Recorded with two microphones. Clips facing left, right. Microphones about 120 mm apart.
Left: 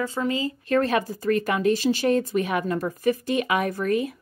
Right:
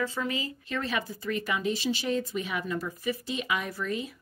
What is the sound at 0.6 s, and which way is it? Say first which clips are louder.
A woman's voice: left 11 dB; 50° left (ahead or behind).